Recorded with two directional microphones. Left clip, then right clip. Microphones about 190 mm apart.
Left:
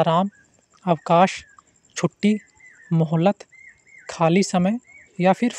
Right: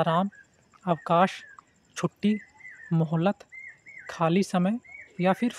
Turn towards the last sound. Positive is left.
turn(degrees=25)  # may be behind; listen again after turning